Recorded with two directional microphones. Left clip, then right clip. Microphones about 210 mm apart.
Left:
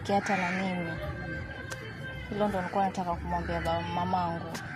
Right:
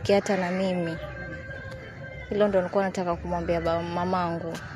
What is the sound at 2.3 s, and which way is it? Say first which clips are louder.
Speech: right 6 dB; 50° right (ahead or behind).